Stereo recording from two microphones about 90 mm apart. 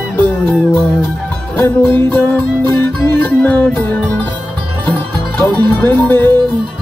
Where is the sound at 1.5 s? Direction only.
25° left (ahead or behind).